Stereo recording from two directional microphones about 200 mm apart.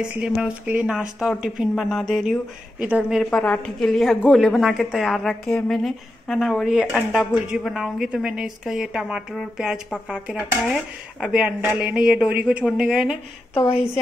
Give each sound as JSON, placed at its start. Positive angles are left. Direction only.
{"t": 0.0, "sound": "speech", "side_deg": -5}
{"t": 13.6, "sound": "a woman's voice", "side_deg": 30}